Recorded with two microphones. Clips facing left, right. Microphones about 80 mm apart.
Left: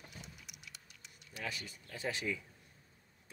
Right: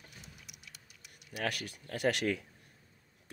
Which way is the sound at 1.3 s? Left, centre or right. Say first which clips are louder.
Right 7 dB; right.